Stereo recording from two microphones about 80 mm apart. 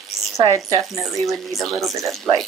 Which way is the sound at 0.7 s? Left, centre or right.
Right.